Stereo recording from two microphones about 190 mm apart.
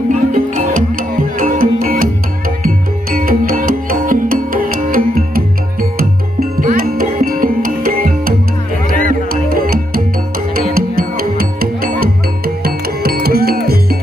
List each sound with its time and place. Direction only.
0.1 s music: 45° right (ahead or behind)